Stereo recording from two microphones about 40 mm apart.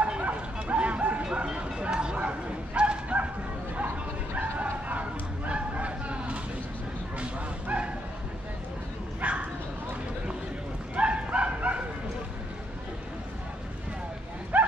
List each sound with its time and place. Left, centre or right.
0.0 s bow-wow: right
1.2 s bow-wow: right
4.8 s a sound: right
7.2 s bow-wow: right
9.2 s bow-wow: right
11.0 s bow-wow: right
14.5 s a sound: right